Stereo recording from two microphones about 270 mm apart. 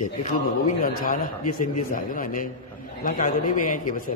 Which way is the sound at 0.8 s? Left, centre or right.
Left.